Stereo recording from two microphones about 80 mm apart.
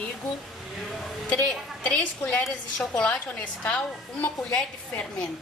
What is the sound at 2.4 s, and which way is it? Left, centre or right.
Speech, centre.